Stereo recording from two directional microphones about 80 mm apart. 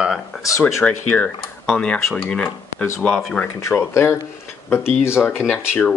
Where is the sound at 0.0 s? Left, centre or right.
Centre.